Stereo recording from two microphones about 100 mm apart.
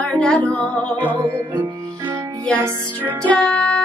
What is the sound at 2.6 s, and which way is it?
Music, 15° right (ahead or behind).